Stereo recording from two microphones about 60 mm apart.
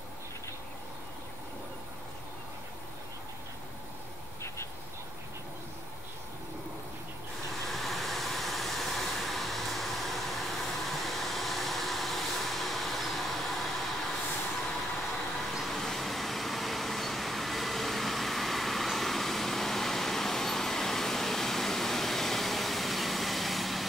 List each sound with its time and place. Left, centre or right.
7.6 s vehicle: centre
15.5 s vehicle: centre